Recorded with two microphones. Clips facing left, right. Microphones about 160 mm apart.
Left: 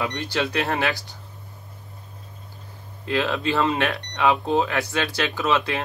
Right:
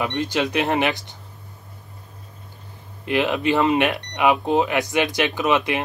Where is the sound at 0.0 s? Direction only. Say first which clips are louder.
Right 3 dB; 20° right (ahead or behind).